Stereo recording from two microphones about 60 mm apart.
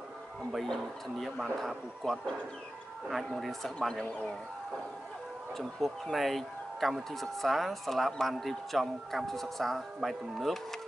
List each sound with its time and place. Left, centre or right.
1.2 s speech: centre
4.0 s speech: left
5.6 s speech: centre